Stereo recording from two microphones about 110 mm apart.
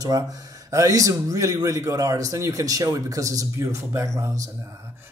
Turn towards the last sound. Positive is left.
turn(degrees=-25)  # may be behind; listen again after turning